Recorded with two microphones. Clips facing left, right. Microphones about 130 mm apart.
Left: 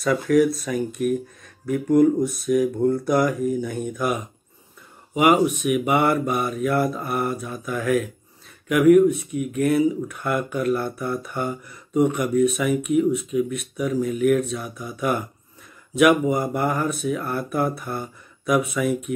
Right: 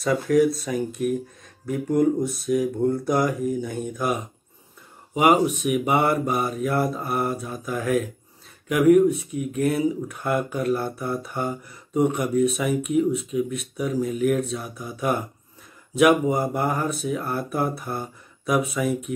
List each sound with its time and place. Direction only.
0.0 s speech: 30° right (ahead or behind)